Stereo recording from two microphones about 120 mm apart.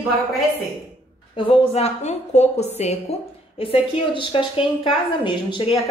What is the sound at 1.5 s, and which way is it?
Speech, 60° left (ahead or behind).